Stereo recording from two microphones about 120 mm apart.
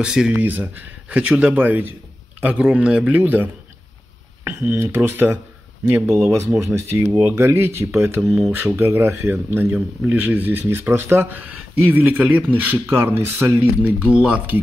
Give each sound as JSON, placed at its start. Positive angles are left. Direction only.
{"t": 0.0, "sound": "speech", "side_deg": -5}
{"t": 4.6, "sound": "speech", "side_deg": -15}
{"t": 8.2, "sound": "speech", "side_deg": 0}
{"t": 8.7, "sound": "speech", "side_deg": -20}